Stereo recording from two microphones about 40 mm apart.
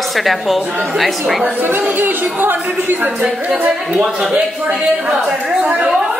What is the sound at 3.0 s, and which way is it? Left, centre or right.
A woman's voice, right.